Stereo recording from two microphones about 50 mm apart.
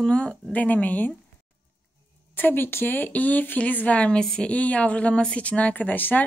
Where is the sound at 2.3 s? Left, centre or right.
Left.